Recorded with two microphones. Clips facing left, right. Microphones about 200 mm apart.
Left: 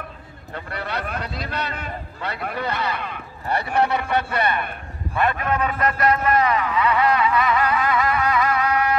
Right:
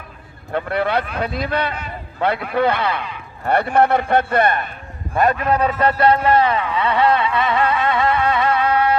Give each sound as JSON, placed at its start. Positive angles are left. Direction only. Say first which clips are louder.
{"t": 0.5, "sound": "a man's voice", "louder": "right 10 dB", "side_deg": -60}